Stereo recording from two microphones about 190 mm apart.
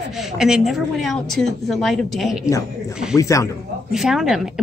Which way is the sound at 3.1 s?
15° left (ahead or behind).